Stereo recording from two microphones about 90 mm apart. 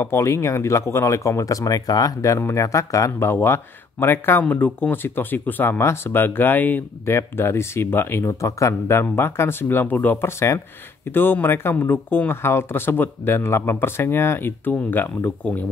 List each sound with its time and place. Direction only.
0.0 s speech: 30° left (ahead or behind)